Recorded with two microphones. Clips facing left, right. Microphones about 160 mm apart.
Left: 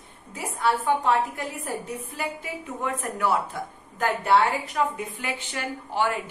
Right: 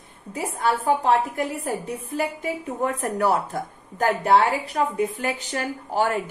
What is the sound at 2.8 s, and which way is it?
A woman's voice, 40° right (ahead or behind).